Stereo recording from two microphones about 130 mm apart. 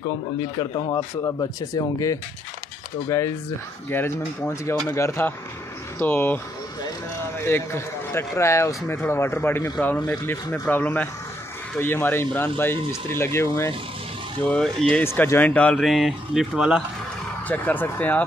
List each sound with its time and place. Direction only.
0.4 s a man's voice: 30° left (ahead or behind)
14.4 s a man's voice: 5° left (ahead or behind)
17.5 s a man's voice: 15° left (ahead or behind)